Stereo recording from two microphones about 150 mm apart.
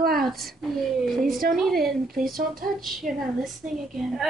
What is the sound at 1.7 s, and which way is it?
Speech, 80° right.